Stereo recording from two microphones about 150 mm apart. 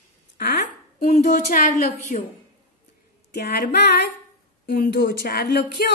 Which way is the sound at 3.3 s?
90° left.